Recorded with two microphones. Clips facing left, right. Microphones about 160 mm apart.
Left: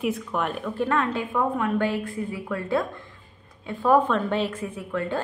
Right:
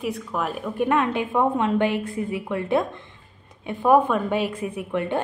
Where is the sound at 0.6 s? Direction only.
15° right (ahead or behind).